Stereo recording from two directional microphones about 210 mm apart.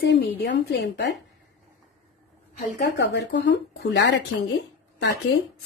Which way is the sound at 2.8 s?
55° left (ahead or behind).